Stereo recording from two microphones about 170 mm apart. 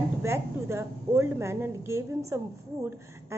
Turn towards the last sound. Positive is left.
turn(degrees=-15)  # may be behind; listen again after turning